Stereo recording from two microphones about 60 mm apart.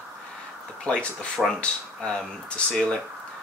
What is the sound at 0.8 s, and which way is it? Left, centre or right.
Speech, centre.